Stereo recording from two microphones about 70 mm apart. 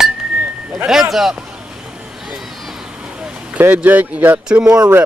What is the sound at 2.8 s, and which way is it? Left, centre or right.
Vehicle, centre.